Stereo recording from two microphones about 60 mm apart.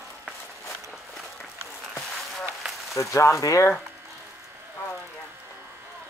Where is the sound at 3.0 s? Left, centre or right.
Left.